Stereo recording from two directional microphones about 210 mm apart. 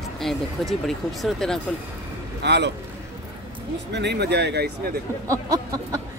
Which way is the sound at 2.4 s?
55° right (ahead or behind).